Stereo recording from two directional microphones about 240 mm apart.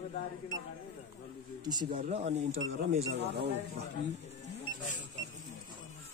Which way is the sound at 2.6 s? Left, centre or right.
Right.